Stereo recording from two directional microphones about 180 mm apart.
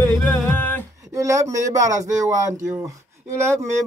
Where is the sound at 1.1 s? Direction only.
15° right (ahead or behind).